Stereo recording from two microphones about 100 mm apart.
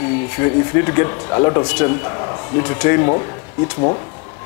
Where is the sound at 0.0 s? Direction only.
30° left (ahead or behind).